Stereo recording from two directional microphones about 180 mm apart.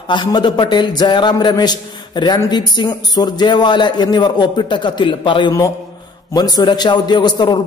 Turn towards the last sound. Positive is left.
turn(degrees=25)  # may be behind; listen again after turning